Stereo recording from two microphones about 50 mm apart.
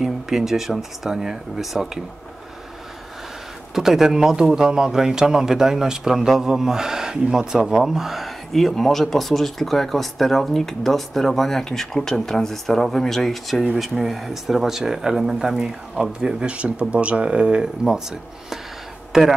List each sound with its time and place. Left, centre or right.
0.0 s speech: centre
3.7 s speech: centre